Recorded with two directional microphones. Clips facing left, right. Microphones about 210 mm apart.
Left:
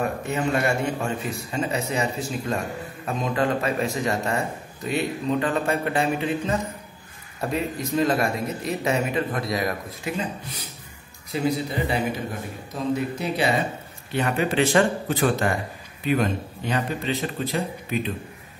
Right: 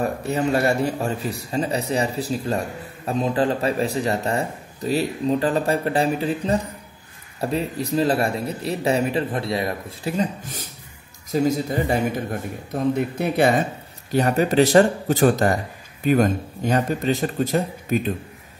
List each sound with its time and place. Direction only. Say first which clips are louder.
0.0 s a man's voice: right 3 dB; 35° right (ahead or behind)